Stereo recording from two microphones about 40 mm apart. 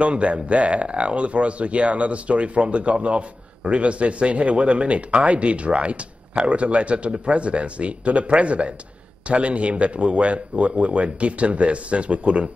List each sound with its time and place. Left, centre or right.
0.0 s speech: right